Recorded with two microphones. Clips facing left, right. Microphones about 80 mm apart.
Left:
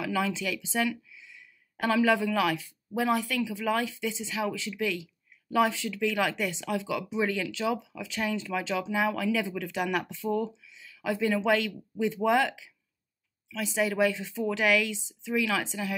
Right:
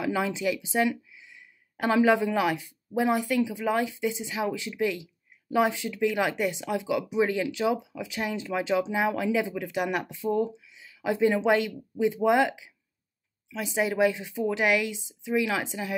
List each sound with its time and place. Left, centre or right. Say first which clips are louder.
0.0 s speech: right 3 dB; right